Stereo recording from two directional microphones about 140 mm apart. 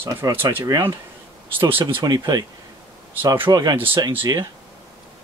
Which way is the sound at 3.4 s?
25° right (ahead or behind).